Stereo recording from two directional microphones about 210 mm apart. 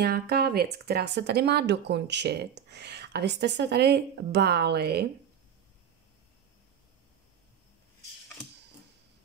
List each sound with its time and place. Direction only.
0.0 s speech: 50° right (ahead or behind)